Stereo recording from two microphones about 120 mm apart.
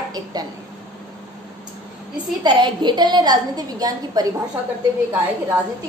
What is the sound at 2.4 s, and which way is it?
A woman's voice, 40° right (ahead or behind).